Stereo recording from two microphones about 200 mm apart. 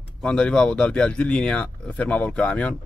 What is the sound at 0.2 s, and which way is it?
Speech, 5° left (ahead or behind).